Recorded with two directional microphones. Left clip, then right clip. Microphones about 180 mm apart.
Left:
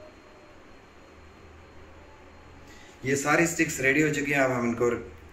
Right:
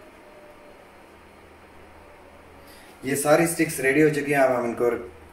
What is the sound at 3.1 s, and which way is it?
A man's voice, 30° right (ahead or behind).